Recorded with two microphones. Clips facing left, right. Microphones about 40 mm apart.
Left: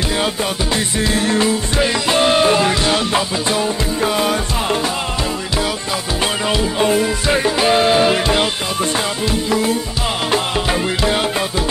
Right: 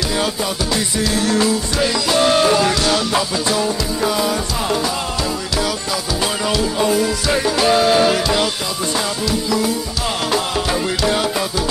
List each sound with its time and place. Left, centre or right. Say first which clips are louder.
0.7 s music: left 1 dB; left
6.5 s music: left 1 dB; left
9.3 s tabla: left 1 dB; left
10.3 s music: left 2 dB; left